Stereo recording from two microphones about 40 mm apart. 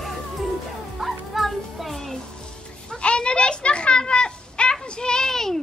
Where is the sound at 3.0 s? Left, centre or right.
Left; by 5.6 s centre.